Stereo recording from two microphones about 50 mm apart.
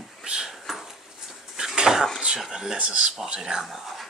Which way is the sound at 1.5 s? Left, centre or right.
Centre.